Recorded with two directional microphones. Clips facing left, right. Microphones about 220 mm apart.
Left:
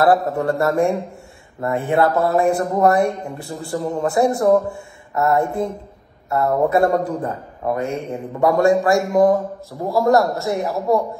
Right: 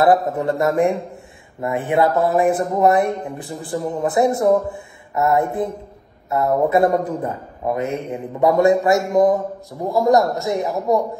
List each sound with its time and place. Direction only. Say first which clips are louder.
0.0 s speech: even; 20° right (ahead or behind)
9.7 s a man's voice: even; 5° right (ahead or behind)
10.0 s a man's voice: even; 20° right (ahead or behind)